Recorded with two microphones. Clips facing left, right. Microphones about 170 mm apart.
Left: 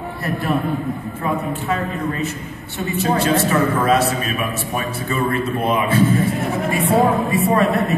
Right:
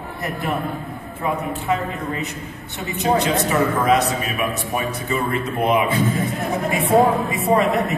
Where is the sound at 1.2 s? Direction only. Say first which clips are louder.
Right 1 dB; 20° right (ahead or behind).